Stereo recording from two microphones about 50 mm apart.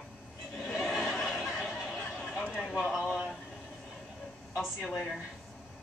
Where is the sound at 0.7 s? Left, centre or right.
Centre.